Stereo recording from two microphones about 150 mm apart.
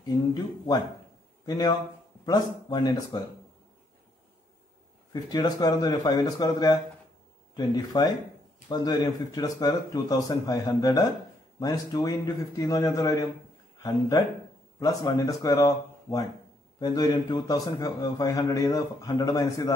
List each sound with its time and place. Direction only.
1.4 s a man's voice: 25° left (ahead or behind)
5.3 s a man's voice: 25° left (ahead or behind)